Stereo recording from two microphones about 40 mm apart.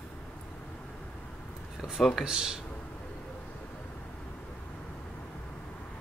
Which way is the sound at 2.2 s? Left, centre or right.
Centre.